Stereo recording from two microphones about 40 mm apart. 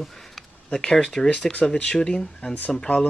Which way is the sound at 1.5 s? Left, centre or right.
Left.